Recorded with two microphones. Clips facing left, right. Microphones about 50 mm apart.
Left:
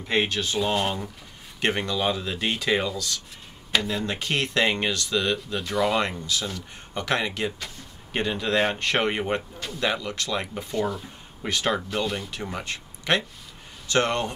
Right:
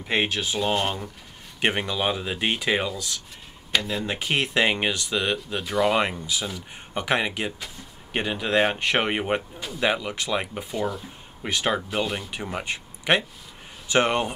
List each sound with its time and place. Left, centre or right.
0.0 s speech: centre
1.6 s speech: centre
3.7 s speech: centre
4.0 s speech: centre